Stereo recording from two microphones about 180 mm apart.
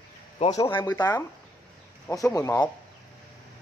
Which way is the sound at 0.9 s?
10° left (ahead or behind).